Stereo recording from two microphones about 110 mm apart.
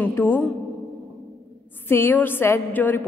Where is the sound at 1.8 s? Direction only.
20° left (ahead or behind).